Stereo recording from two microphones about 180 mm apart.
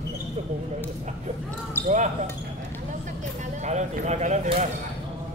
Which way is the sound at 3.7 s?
40° right (ahead or behind).